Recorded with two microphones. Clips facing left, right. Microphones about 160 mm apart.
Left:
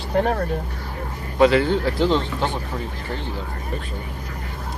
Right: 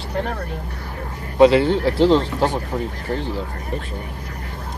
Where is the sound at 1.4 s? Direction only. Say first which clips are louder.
Right 3 dB; 25° right (ahead or behind).